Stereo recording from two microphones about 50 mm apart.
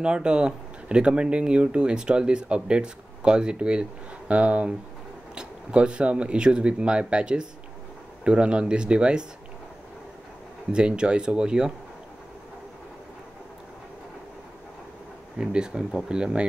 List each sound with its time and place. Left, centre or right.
0.0 s speech: centre
10.7 s speech: centre
15.3 s speech: centre